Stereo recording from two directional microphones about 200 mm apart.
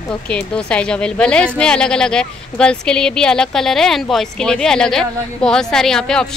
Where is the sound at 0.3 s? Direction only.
5° left (ahead or behind).